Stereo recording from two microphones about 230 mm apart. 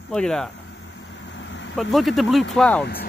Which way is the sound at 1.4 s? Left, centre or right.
Left.